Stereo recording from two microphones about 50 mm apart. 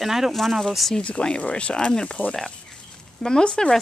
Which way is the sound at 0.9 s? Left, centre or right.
Left.